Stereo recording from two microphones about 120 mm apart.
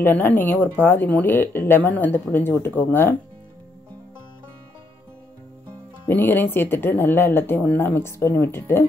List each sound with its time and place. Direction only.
0.0 s speech: 15° left (ahead or behind)
6.0 s speech: 15° left (ahead or behind)